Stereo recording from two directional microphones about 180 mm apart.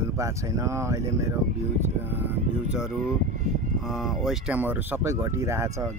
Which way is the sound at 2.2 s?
5° right (ahead or behind).